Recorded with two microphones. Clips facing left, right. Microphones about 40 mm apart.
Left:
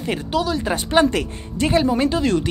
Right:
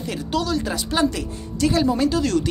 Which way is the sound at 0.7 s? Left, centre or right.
Left.